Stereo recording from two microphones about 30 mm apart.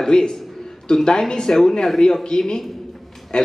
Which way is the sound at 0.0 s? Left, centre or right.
Left.